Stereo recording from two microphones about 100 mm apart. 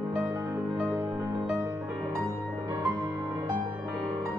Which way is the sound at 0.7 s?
20° right (ahead or behind).